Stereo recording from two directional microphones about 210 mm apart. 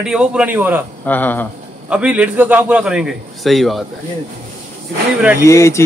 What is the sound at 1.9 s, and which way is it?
Speech, 5° right (ahead or behind).